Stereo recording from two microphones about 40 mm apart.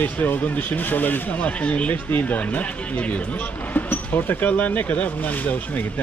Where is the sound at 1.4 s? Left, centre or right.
Left.